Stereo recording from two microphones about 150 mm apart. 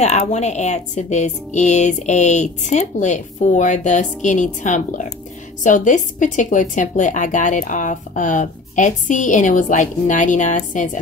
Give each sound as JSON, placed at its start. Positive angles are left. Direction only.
{"t": 0.0, "sound": "a woman's voice", "side_deg": 50}